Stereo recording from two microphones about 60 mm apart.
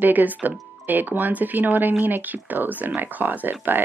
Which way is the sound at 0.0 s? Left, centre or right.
Right.